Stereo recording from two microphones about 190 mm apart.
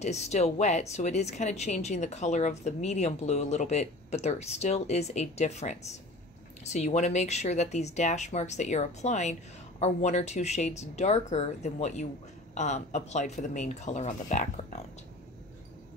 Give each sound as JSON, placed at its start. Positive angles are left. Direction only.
{"t": 0.0, "sound": "speech", "side_deg": 35}